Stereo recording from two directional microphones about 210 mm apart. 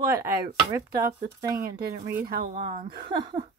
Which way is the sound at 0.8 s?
45° right (ahead or behind).